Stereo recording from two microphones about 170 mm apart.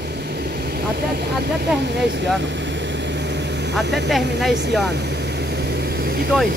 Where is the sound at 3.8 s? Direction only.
90° right.